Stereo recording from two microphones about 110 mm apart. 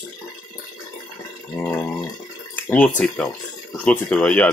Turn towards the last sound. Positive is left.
turn(degrees=10)  # may be behind; listen again after turning